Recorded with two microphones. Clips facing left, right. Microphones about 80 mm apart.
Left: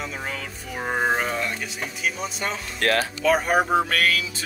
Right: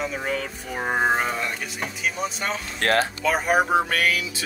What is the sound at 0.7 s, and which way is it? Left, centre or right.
Speech, centre.